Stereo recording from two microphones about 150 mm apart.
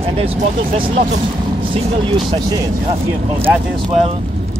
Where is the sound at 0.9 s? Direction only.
55° right (ahead or behind).